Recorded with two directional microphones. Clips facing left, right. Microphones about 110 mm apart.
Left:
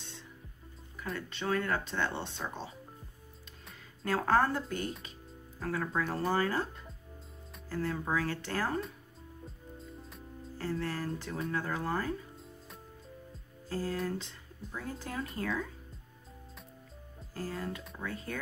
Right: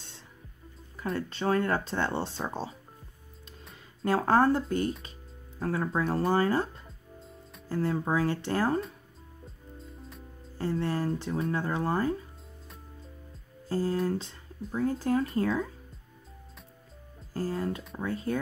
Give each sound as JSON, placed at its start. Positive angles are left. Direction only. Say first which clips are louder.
{"t": 1.1, "sound": "speech", "louder": "right 5 dB", "side_deg": -35}
{"t": 4.0, "sound": "speech", "louder": "right 4 dB", "side_deg": -25}
{"t": 9.8, "sound": "music", "louder": "right 3 dB", "side_deg": 0}
{"t": 10.6, "sound": "speech", "louder": "right 6 dB", "side_deg": -25}
{"t": 13.7, "sound": "speech", "louder": "right 6 dB", "side_deg": -30}
{"t": 17.3, "sound": "speech", "louder": "right 7 dB", "side_deg": -35}